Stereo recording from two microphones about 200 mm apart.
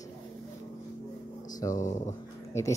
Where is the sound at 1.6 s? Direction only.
20° left (ahead or behind).